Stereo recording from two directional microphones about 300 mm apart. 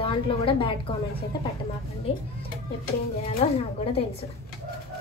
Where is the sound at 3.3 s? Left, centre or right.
Centre.